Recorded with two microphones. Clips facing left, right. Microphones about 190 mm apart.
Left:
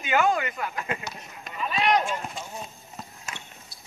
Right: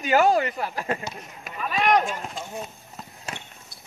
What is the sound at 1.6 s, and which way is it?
Run, 50° right (ahead or behind).